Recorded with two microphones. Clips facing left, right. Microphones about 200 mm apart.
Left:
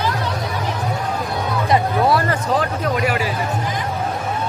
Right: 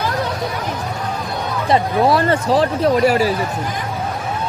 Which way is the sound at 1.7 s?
25° right (ahead or behind).